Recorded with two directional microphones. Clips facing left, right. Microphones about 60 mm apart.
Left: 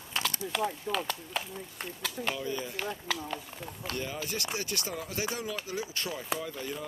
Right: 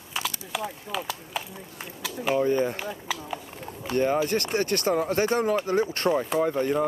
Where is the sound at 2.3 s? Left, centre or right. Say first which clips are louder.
Right 12 dB; right.